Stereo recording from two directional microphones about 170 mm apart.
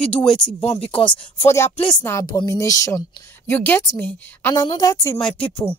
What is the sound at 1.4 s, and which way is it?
A woman's voice, 15° left (ahead or behind).